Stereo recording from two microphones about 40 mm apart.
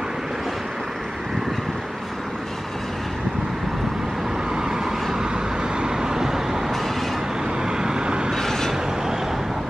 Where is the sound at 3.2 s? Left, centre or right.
Centre.